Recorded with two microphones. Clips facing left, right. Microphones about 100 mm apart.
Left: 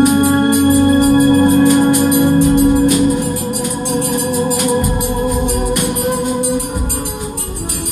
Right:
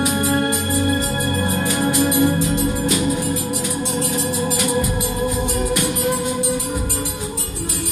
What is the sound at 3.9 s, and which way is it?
Organ, 60° left (ahead or behind).